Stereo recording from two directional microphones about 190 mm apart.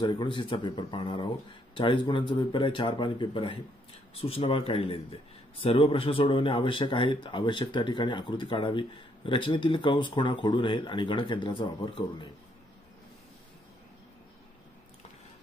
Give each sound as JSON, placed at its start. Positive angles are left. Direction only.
{"t": 0.0, "sound": "speech", "side_deg": 25}